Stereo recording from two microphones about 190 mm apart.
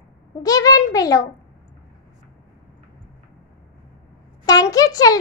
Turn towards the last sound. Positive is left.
turn(degrees=20)  # may be behind; listen again after turning